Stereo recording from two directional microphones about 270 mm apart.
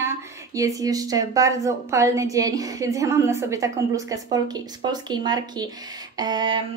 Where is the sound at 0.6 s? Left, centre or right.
Centre.